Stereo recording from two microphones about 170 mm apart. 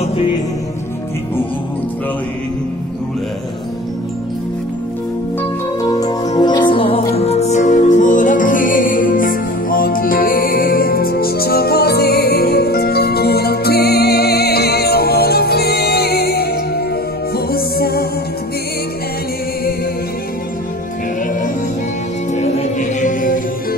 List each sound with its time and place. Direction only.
5.8 s music: 20° left (ahead or behind); by 18.0 s 65° left (ahead or behind)
22.3 s music: 45° left (ahead or behind)